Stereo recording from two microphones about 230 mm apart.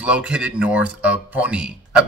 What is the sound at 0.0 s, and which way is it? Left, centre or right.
Speech, centre.